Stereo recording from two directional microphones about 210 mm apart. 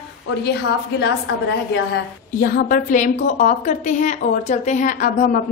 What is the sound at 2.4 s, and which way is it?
A woman's voice, 45° left (ahead or behind).